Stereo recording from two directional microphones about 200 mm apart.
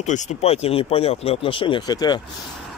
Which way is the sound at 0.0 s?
35° left (ahead or behind).